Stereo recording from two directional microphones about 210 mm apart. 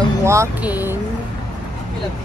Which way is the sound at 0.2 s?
15° right (ahead or behind).